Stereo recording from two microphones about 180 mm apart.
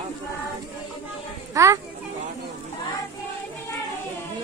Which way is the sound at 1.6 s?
15° right (ahead or behind).